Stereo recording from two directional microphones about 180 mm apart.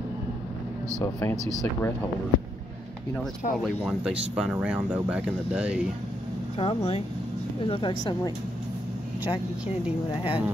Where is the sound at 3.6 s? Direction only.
Centre (ahead or behind).